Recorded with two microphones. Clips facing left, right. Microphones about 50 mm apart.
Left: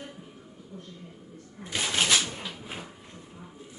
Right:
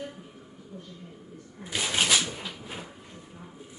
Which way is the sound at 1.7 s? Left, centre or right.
Centre.